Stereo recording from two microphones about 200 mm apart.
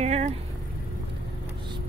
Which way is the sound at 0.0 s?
35° right (ahead or behind).